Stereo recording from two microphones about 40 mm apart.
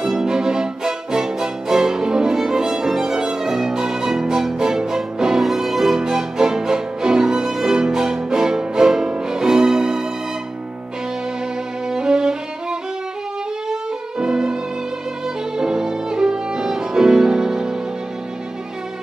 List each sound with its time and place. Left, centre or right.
0.0 s music: centre
5.4 s music: centre
5.9 s music: centre
11.9 s music: centre
13.7 s music: centre
15.5 s violin: centre